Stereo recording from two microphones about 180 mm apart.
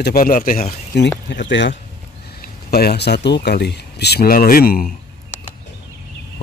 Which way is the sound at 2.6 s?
60° left (ahead or behind).